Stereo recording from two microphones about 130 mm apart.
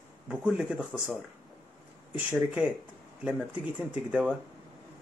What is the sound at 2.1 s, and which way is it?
Speech, 10° right (ahead or behind).